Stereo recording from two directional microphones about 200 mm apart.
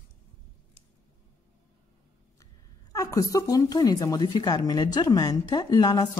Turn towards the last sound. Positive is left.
turn(degrees=20)  # may be behind; listen again after turning